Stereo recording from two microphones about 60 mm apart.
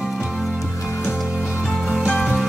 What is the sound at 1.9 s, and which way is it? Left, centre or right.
Music, centre.